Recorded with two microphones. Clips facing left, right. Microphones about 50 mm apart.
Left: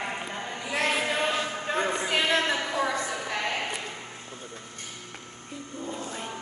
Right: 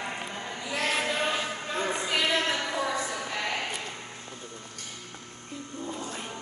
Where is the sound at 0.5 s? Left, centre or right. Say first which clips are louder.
Left 3 dB; left.